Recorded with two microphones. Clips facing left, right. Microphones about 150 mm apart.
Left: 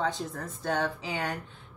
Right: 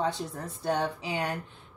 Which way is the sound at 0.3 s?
10° right (ahead or behind).